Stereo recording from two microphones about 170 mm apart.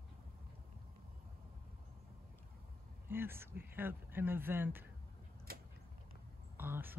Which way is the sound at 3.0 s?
15° right (ahead or behind).